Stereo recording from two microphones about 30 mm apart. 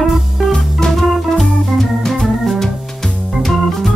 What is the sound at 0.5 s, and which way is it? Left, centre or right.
Music, centre.